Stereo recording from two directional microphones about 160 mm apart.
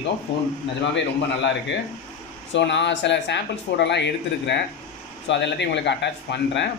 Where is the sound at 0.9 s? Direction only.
90° left.